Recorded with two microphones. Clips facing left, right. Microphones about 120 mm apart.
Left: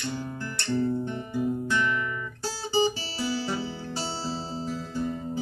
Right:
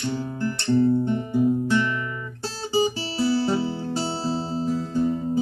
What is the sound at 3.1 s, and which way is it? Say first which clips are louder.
Guitar: right 8 dB; 30° right (ahead or behind).